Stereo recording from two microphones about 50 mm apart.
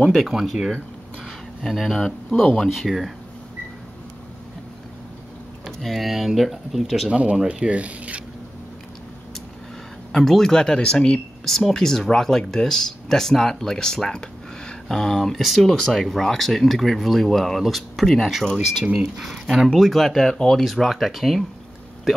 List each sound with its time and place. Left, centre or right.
0.0 s speech: centre
0.3 s speech: centre
1.2 s a sound: centre
2.0 s speech: centre
5.7 s speech: centre
7.1 s speech: right
10.1 s speech: centre
11.4 s speech: centre